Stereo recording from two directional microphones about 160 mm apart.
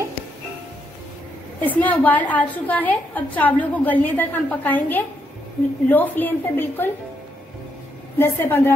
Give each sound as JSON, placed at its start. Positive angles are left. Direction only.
{"t": 1.6, "sound": "a woman's voice", "side_deg": 10}
{"t": 8.2, "sound": "a woman's voice", "side_deg": 15}